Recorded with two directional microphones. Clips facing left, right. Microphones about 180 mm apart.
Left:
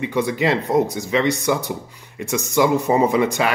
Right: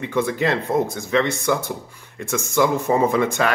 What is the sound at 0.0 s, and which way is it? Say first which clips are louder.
A man's voice: left 1 dB; 10° left (ahead or behind).